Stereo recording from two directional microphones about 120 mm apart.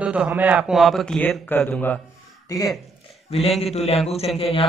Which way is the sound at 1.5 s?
15° left (ahead or behind).